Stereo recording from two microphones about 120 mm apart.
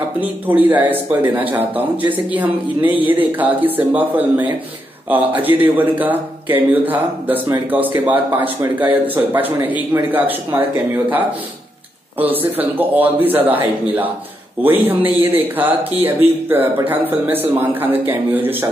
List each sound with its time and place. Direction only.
0.2 s speech: 15° right (ahead or behind)
12.2 s speech: 15° right (ahead or behind)